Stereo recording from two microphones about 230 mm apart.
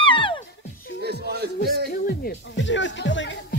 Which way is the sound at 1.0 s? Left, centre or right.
Right.